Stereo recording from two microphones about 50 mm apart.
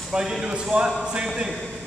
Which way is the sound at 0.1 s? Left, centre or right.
Centre.